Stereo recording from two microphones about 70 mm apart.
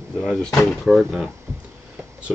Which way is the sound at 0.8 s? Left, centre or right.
Centre.